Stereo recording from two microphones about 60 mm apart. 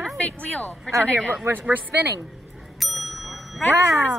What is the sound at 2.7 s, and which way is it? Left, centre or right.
Bicycle bell, centre.